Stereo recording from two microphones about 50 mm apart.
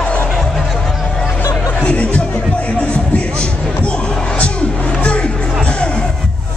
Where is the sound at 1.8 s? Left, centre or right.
Left.